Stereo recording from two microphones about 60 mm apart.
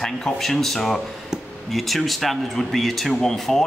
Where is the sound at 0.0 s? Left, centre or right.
Centre.